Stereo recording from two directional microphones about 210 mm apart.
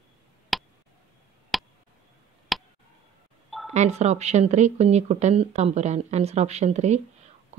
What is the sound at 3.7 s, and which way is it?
A woman's voice, 30° right (ahead or behind).